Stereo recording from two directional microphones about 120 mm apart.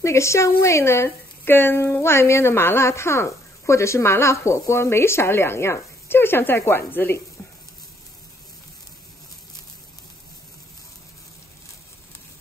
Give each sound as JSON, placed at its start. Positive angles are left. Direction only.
{"t": 0.0, "sound": "a woman's voice", "side_deg": 25}